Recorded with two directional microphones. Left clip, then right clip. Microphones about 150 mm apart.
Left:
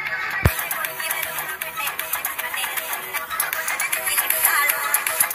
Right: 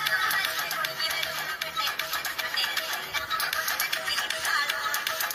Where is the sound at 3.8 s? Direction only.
40° left (ahead or behind).